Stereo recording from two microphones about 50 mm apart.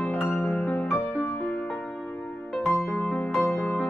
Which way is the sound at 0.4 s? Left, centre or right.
Left.